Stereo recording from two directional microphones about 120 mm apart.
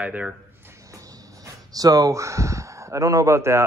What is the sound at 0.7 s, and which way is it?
Speech, 25° right (ahead or behind).